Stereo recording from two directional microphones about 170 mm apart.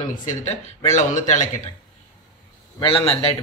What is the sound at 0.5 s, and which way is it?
A man's voice, 45° left (ahead or behind).